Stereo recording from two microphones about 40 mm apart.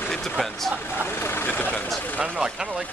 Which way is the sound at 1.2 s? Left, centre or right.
Left.